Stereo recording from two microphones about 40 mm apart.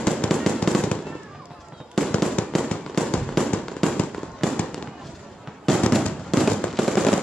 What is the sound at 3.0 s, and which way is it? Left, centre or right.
Fireworks, centre.